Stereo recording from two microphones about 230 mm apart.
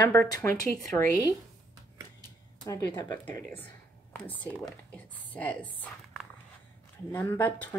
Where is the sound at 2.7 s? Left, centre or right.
Centre.